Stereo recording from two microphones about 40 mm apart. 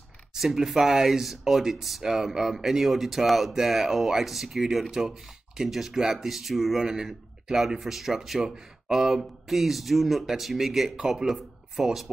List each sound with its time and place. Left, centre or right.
0.4 s speech: centre
6.8 s speech: centre